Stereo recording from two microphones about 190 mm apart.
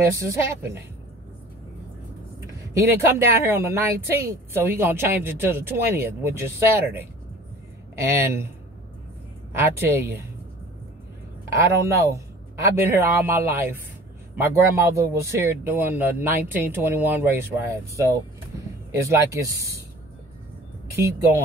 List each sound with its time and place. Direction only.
0.0 s speech: 15° right (ahead or behind)
2.8 s speech: 10° right (ahead or behind)
9.6 s speech: 10° right (ahead or behind)
11.5 s speech: 15° right (ahead or behind)